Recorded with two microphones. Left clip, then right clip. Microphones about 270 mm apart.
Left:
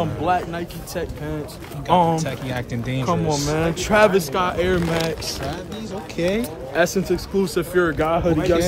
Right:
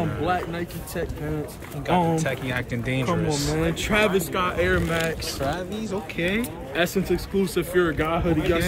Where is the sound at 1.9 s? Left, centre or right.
Centre.